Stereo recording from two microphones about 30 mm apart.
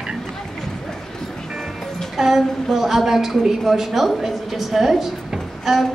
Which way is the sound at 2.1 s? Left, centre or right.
Centre.